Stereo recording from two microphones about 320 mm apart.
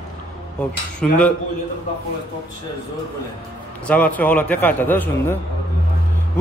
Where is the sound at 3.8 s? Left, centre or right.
Centre.